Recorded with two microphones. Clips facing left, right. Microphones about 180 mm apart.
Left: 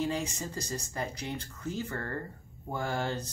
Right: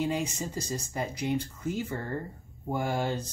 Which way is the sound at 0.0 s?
15° right (ahead or behind).